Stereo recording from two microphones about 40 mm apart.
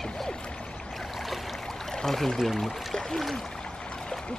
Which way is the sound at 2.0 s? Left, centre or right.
Centre.